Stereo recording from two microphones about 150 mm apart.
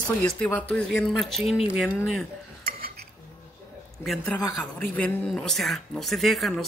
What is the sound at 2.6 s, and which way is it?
Dishes, 90° right.